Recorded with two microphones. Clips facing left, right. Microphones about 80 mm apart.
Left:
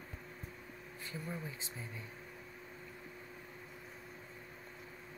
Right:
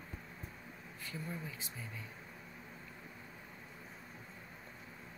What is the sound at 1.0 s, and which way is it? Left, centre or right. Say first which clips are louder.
Speech: even; left.